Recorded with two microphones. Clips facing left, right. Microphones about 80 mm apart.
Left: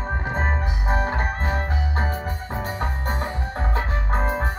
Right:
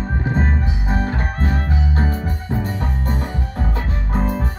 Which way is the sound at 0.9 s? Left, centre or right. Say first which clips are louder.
Even; left.